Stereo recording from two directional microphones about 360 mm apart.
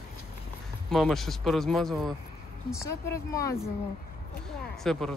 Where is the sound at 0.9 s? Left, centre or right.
Centre.